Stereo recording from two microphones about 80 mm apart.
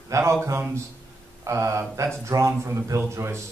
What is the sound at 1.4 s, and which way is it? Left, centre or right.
A man's voice, right.